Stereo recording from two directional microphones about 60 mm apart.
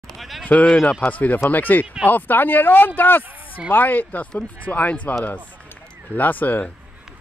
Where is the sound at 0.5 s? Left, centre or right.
Centre.